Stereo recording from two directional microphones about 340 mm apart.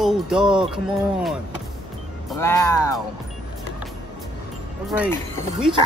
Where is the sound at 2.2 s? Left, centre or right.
Centre.